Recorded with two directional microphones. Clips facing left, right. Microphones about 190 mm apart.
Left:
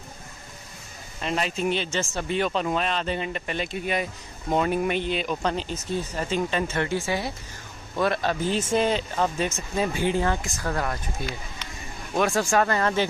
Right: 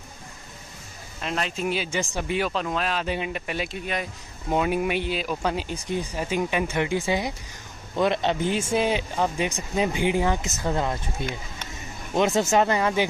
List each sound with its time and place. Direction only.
1.2 s a man's voice: centre (ahead or behind)